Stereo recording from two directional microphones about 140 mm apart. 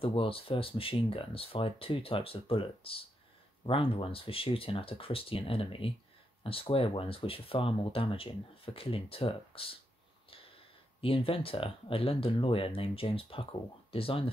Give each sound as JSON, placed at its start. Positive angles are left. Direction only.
{"t": 0.0, "sound": "speech", "side_deg": 40}
{"t": 11.0, "sound": "speech", "side_deg": 40}